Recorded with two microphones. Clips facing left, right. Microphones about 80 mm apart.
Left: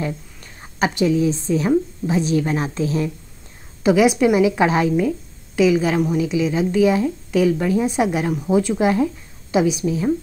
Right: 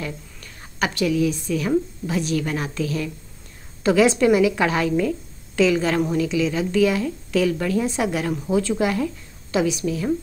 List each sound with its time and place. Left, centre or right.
0.0 s a woman's voice: left